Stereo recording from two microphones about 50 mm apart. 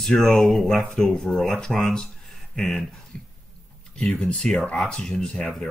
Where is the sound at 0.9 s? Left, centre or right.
Centre.